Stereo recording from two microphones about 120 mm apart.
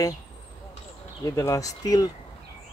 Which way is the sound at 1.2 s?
25° left (ahead or behind).